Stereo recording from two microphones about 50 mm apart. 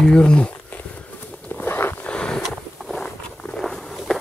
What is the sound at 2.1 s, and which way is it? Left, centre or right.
Wild animals, centre.